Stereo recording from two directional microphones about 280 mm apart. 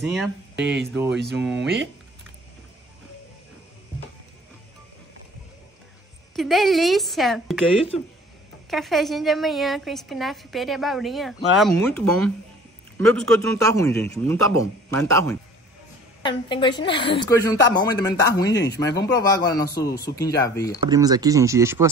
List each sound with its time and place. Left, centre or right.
0.1 s a woman's voice: centre
6.3 s a woman's voice: centre
8.6 s a woman's voice: centre
13.0 s speech: right
13.6 s a woman's voice: centre
16.3 s a woman's voice: centre
20.9 s speech: centre